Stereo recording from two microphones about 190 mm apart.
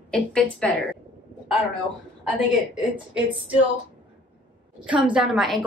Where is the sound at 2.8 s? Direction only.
5° right (ahead or behind).